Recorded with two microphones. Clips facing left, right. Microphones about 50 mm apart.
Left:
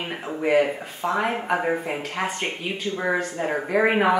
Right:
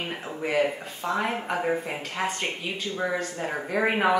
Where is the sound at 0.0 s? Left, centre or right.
Centre.